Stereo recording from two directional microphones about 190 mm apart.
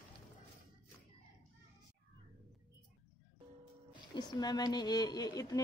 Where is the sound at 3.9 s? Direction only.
20° left (ahead or behind).